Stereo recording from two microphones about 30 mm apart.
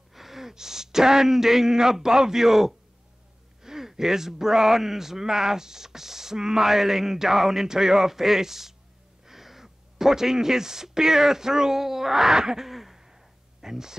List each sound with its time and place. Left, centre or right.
0.1 s speech: centre
12.4 s throat clearing: centre
12.6 s throat clearing: centre
13.0 s a sound: centre